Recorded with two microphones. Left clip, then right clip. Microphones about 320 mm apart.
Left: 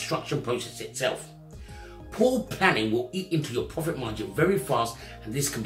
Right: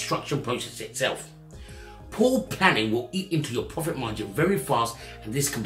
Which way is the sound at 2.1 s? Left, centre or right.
Centre.